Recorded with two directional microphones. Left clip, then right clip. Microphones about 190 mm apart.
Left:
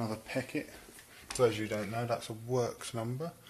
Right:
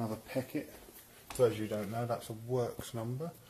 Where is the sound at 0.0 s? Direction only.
10° left (ahead or behind).